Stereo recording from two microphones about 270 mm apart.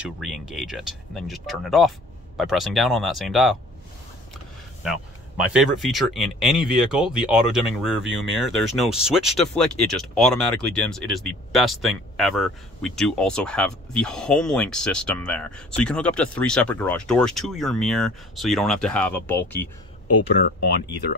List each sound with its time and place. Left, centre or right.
0.0 s speech: centre
5.4 s speech: centre
19.5 s speech: left
20.4 s speech: left